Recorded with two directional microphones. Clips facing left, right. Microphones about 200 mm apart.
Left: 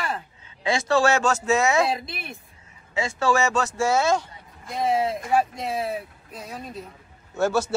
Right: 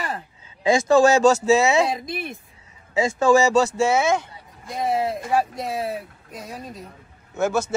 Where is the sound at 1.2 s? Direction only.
35° right (ahead or behind).